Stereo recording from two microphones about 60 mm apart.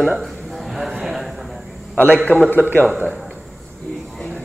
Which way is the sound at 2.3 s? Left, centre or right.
Left.